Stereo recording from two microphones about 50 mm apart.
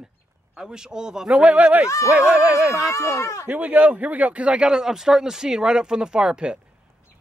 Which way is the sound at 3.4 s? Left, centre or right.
Right.